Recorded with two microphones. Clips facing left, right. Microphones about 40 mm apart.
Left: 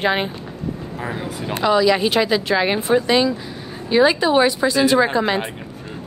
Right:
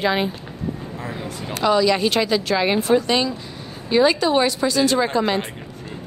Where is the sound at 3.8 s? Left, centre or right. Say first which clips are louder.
Left 2 dB; centre.